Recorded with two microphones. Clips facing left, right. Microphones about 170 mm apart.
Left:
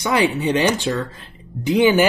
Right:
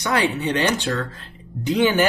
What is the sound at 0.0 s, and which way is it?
Speech, 15° left (ahead or behind).